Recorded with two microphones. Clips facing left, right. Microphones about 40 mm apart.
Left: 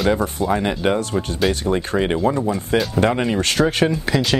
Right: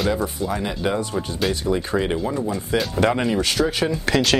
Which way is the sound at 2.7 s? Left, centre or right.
Left.